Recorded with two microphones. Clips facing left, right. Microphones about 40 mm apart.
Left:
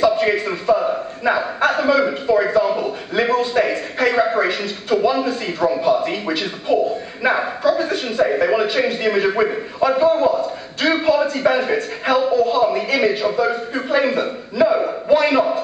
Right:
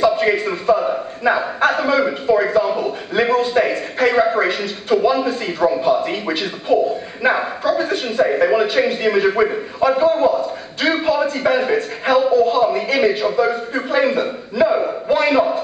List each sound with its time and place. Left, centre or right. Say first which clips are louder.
0.1 s a man's voice: right 1 dB; centre